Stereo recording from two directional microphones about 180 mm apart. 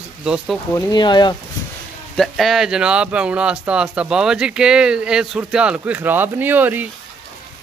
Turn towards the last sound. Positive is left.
turn(degrees=-10)  # may be behind; listen again after turning